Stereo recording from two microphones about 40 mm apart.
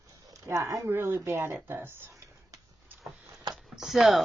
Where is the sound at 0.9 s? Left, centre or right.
Right.